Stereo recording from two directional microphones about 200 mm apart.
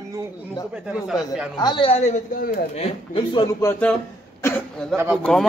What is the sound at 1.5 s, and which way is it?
A man's voice, 25° left (ahead or behind).